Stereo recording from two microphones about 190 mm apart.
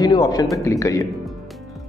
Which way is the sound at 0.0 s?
20° left (ahead or behind).